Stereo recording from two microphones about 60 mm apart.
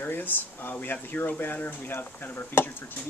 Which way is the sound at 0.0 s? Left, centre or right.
Left.